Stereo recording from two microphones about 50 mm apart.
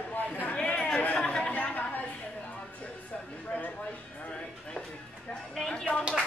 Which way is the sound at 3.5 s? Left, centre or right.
Left.